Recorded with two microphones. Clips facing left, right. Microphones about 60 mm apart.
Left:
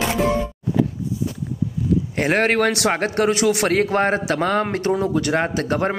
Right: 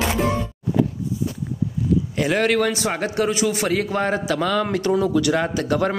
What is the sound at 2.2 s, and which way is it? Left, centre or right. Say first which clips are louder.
A man's voice: left 2 dB; left.